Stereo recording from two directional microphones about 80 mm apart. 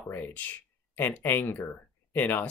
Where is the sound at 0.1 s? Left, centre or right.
Left.